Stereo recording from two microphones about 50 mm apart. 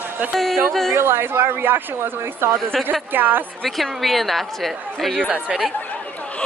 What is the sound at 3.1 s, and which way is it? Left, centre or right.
Speech, right.